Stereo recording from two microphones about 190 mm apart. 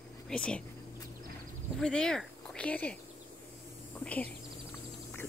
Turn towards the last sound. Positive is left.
turn(degrees=10)  # may be behind; listen again after turning